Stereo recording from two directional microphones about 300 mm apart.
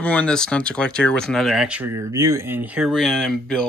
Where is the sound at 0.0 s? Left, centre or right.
Centre.